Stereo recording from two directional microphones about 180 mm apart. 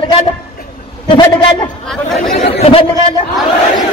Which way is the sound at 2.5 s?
30° left (ahead or behind).